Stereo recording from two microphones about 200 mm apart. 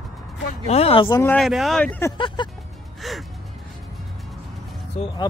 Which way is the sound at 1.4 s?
Centre (ahead or behind).